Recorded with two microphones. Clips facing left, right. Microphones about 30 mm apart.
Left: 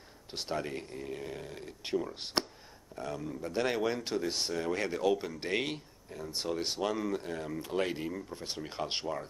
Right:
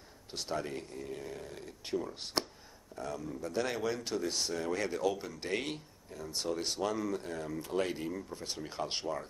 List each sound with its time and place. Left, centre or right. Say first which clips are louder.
0.3 s speech: left 1 dB; left